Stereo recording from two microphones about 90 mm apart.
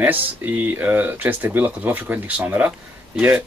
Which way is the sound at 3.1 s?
10° right (ahead or behind).